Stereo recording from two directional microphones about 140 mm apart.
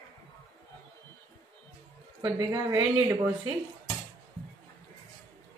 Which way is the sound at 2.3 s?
20° right (ahead or behind).